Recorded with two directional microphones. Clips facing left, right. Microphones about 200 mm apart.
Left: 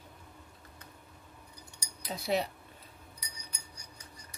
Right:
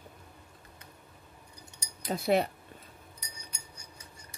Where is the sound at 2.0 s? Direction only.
50° right (ahead or behind).